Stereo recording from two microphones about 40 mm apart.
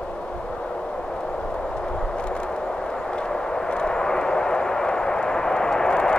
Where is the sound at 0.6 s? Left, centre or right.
Centre.